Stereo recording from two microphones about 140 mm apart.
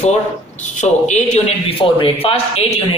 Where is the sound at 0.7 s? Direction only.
55° left (ahead or behind).